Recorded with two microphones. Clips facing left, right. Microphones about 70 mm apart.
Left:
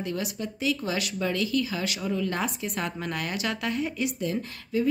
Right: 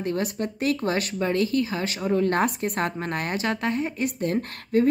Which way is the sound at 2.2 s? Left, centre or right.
Right.